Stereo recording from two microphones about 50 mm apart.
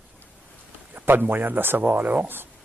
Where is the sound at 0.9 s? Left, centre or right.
Right.